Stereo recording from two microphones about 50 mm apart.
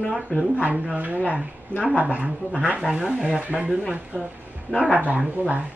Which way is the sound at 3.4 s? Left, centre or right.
Right.